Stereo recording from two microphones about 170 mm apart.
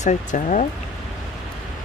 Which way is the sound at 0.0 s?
45° left (ahead or behind).